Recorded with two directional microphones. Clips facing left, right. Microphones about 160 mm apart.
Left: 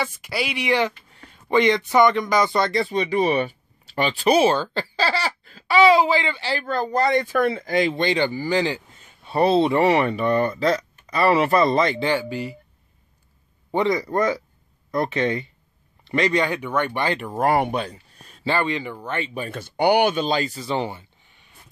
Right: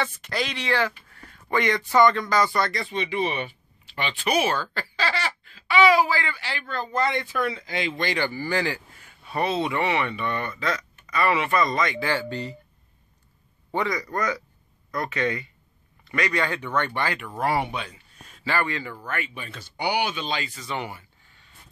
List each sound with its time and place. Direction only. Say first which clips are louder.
0.0 s speech: left 2 dB; 10° left (ahead or behind); by 2.9 s 25° left (ahead or behind)
2.9 s speech: left 6 dB; 40° left (ahead or behind)
6.6 s speech: left 4 dB; 40° left (ahead or behind)
8.0 s speech: left 5 dB; 20° left (ahead or behind)
12.1 s speech: left 4 dB; 10° left (ahead or behind)
13.7 s speech: left 6 dB; 25° left (ahead or behind)
17.2 s speech: left 7 dB; 45° left (ahead or behind); by 19.3 s 25° left (ahead or behind)
19.3 s speech: left 9 dB; 50° left (ahead or behind); by 21.5 s 20° left (ahead or behind)